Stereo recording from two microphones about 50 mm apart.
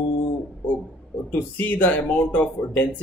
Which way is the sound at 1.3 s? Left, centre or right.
Left.